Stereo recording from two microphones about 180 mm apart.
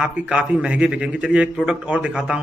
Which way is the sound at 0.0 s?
5° right (ahead or behind).